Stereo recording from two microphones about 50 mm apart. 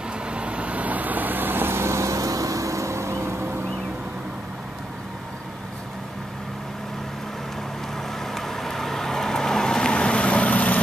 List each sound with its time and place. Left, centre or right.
0.3 s vehicle: right
8.2 s vehicle: centre; by 10.8 s left